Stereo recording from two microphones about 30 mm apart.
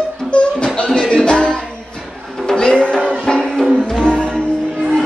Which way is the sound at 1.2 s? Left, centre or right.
Left.